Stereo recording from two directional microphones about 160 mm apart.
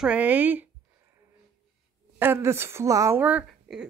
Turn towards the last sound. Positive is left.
turn(degrees=-5)  # may be behind; listen again after turning